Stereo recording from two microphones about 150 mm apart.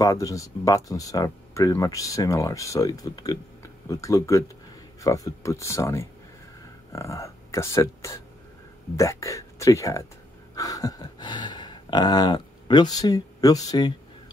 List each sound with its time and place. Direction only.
0.0 s speech: 20° left (ahead or behind)